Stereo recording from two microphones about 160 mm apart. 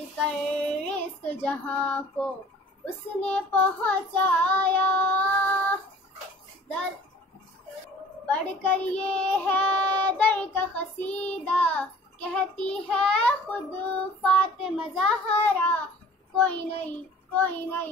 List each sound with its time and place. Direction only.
0.3 s child singing: 5° left (ahead or behind)
8.3 s child singing: 10° left (ahead or behind)
9.0 s child singing: 40° left (ahead or behind)
9.3 s child singing: 10° left (ahead or behind)
14.6 s a child's voice: 5° left (ahead or behind)
15.3 s child singing: 10° left (ahead or behind)